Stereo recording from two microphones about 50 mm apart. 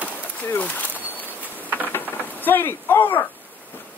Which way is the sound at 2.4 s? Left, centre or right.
Left.